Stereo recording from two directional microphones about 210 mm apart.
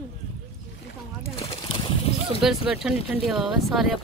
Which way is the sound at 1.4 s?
25° left (ahead or behind).